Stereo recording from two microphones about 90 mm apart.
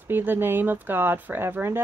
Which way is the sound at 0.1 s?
25° right (ahead or behind).